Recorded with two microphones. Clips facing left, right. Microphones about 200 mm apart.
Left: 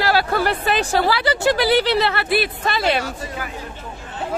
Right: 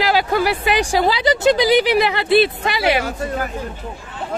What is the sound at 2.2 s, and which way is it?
Speech, 25° right (ahead or behind).